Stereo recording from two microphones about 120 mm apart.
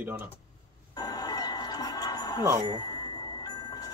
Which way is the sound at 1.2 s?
30° left (ahead or behind).